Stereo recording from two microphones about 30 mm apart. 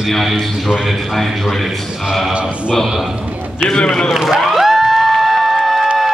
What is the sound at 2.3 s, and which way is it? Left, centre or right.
Speech, right.